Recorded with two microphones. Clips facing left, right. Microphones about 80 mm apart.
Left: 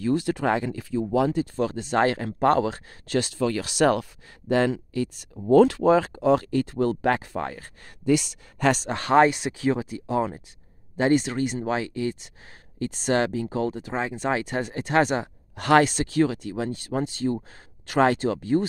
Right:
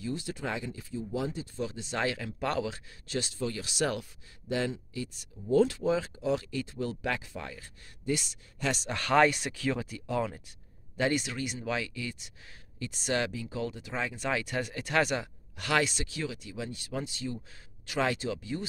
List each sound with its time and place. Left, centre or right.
0.0 s speech: left
0.7 s speech: left
8.5 s speech: left
8.9 s speech: left